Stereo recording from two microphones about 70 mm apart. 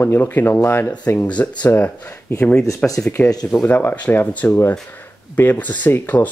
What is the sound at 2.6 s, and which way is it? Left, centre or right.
Speech, left.